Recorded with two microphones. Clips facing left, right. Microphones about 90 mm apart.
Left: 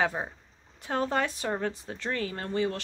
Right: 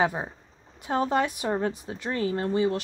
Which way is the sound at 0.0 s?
15° right (ahead or behind).